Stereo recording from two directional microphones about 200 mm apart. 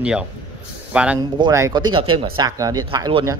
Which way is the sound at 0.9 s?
5° right (ahead or behind).